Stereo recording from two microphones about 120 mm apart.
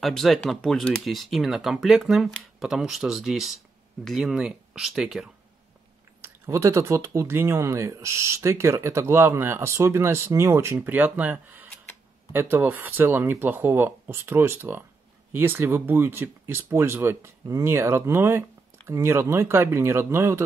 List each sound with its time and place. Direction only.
0.0 s speech: centre (ahead or behind)
6.2 s speech: 25° right (ahead or behind)